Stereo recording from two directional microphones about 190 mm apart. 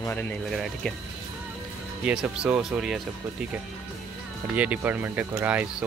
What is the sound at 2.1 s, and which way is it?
Speech, 5° right (ahead or behind).